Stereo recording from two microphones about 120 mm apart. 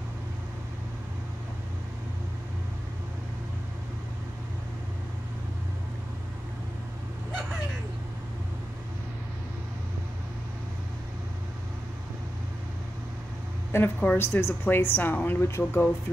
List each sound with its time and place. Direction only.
13.7 s a woman's voice: 20° left (ahead or behind)